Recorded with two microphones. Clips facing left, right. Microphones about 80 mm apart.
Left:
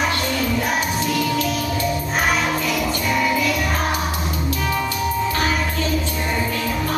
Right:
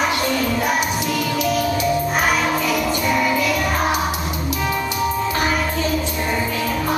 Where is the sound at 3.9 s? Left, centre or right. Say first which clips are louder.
Right 2 dB; centre.